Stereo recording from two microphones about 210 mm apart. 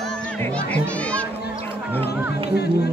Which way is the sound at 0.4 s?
5° left (ahead or behind).